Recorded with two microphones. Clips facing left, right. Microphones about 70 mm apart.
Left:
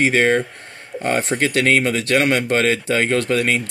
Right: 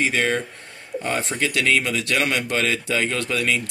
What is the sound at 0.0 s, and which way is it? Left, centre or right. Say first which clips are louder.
Speech: left 6 dB; left.